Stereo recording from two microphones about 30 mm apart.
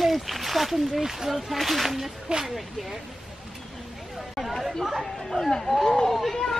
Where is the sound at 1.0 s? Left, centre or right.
Centre.